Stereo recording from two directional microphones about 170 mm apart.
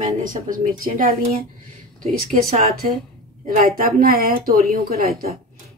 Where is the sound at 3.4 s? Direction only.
55° right (ahead or behind).